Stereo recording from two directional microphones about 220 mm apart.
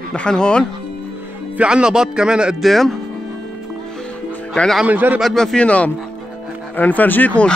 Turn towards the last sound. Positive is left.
turn(degrees=5)  # may be behind; listen again after turning